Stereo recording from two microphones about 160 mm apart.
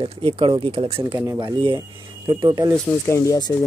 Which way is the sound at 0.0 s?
35° right (ahead or behind).